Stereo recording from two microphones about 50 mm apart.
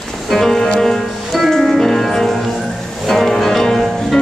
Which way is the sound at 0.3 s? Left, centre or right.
Centre.